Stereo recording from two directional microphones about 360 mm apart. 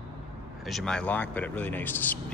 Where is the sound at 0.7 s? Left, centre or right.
Centre.